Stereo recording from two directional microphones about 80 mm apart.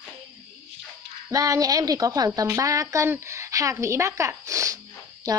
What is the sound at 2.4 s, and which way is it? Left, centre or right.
A woman's voice, right.